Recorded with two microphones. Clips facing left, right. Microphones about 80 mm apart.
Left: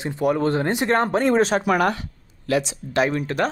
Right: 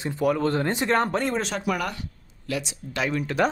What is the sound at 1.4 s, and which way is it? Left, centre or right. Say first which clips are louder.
Speech: left 8 dB; left.